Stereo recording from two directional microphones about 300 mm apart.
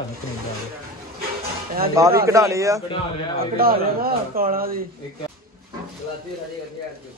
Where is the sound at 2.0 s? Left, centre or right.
Centre.